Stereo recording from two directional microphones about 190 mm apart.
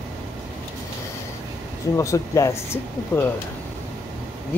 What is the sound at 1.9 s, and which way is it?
Speech, 15° left (ahead or behind).